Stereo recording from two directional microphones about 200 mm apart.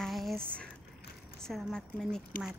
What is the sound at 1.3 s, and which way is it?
Speech, 5° left (ahead or behind).